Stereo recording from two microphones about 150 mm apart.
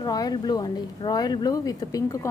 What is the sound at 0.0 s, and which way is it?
Speech, 25° left (ahead or behind).